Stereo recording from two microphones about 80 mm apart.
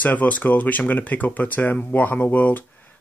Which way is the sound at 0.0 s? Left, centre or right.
Left.